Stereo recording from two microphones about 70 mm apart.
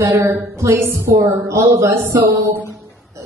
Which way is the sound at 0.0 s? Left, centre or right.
Right.